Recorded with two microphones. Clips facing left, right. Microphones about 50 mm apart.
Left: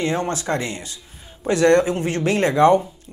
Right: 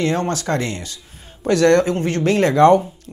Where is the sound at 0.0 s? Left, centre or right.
Centre.